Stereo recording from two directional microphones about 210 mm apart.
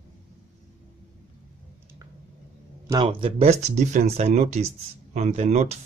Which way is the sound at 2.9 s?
25° right (ahead or behind).